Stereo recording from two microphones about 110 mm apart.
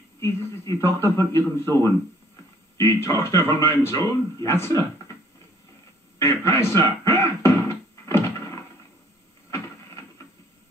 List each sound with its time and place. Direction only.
0.2 s speech: 25° left (ahead or behind)
6.1 s music: 30° left (ahead or behind)
9.5 s a sound: 25° left (ahead or behind)